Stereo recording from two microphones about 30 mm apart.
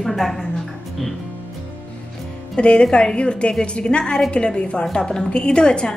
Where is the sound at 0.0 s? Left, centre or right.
Centre.